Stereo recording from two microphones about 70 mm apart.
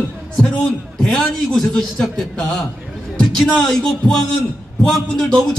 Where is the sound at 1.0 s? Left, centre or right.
Centre.